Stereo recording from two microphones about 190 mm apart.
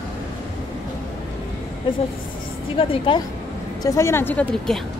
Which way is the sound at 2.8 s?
25° left (ahead or behind).